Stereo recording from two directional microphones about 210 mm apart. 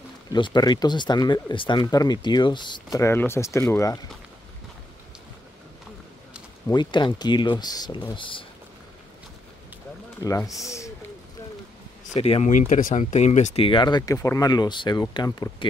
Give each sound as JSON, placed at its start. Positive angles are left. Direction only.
{"t": 0.3, "sound": "speech", "side_deg": 20}
{"t": 6.7, "sound": "speech", "side_deg": 20}
{"t": 10.2, "sound": "speech", "side_deg": 15}
{"t": 12.1, "sound": "speech", "side_deg": 30}